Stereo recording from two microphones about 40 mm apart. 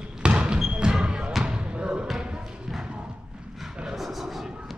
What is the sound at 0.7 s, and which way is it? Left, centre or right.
Basketball bounce, right.